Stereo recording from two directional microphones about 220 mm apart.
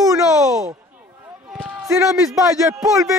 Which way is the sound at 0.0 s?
15° right (ahead or behind).